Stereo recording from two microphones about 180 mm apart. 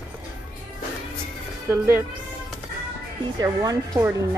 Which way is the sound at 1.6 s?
15° right (ahead or behind).